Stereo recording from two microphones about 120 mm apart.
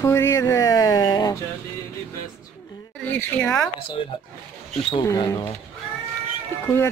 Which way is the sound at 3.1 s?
15° left (ahead or behind).